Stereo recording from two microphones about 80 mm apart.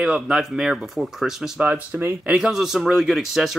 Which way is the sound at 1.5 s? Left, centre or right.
Centre.